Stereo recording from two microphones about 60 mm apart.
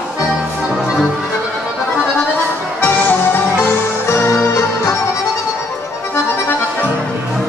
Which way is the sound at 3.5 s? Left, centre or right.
Left.